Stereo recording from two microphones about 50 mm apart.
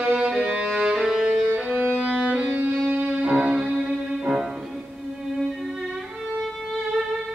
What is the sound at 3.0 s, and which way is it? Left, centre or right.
Music, right.